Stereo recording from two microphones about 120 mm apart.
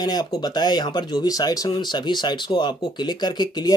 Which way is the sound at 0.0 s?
35° left (ahead or behind).